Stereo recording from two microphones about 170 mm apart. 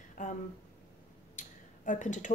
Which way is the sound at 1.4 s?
50° left (ahead or behind).